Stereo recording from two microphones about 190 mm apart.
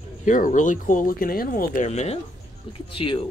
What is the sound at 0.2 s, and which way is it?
Speech, 45° left (ahead or behind).